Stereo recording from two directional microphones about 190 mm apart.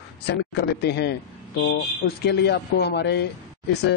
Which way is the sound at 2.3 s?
60° left (ahead or behind).